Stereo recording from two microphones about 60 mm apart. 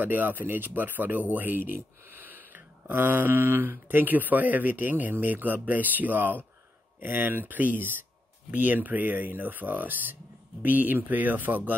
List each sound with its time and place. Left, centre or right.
0.0 s speech: right